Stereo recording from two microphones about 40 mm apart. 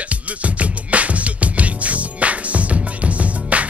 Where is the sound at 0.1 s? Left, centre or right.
Right.